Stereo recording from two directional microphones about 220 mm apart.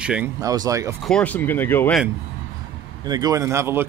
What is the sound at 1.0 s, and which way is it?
Speech, 5° left (ahead or behind).